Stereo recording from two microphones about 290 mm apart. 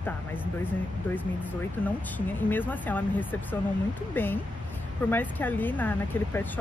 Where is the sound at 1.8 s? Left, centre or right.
Centre.